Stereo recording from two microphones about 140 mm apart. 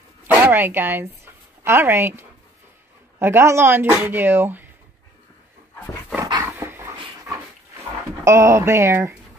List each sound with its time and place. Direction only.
0.3 s speech: 15° right (ahead or behind)
6.4 s dog: 15° right (ahead or behind)
8.2 s speech: 20° right (ahead or behind)